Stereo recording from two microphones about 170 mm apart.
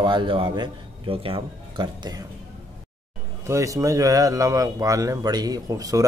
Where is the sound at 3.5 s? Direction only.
20° right (ahead or behind).